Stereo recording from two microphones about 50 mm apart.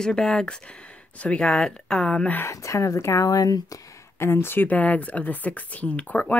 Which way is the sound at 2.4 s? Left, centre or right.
Left.